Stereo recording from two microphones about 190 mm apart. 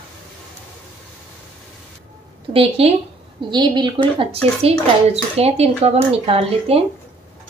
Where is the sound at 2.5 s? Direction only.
30° right (ahead or behind).